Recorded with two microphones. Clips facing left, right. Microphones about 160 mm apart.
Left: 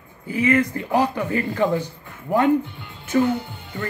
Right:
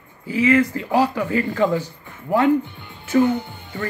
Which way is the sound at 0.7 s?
15° right (ahead or behind).